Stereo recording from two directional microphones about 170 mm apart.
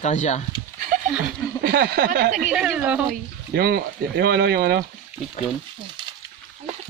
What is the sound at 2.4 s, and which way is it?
Speech, 5° right (ahead or behind).